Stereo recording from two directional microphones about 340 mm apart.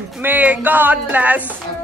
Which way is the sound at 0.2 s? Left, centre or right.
Centre.